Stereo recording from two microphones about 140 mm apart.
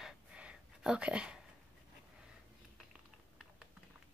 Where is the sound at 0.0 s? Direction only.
5° right (ahead or behind).